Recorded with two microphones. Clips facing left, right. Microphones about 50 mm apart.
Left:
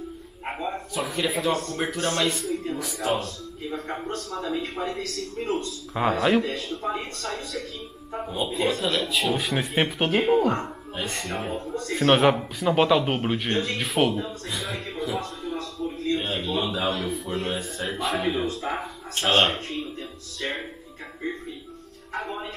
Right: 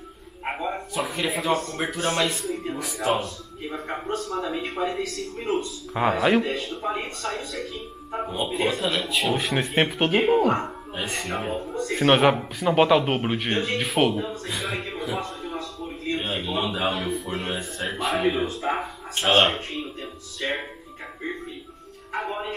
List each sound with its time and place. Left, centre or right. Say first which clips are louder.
0.5 s bow-wow: right 2 dB; centre
0.9 s speech: left 1 dB; centre
3.7 s speech: right 2 dB; centre
6.4 s speech: right 1 dB; right
13.8 s speech: right 1 dB; centre
14.1 s speech: right 2 dB; centre
14.5 s speech: right 3 dB; centre
15.0 s music: even; centre
16.2 s a man's voice: even; centre
18.2 s speech: right 2 dB; centre
19.8 s music: even; right